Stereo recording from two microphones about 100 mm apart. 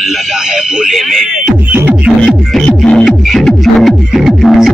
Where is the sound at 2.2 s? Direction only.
5° left (ahead or behind).